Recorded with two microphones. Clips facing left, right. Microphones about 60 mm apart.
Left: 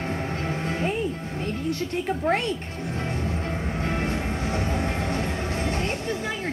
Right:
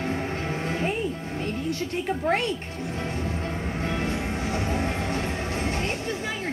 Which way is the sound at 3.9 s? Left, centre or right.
Left.